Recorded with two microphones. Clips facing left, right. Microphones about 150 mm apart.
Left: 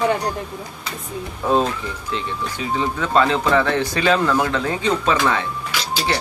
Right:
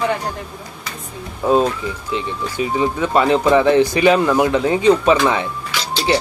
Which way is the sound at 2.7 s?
15° right (ahead or behind).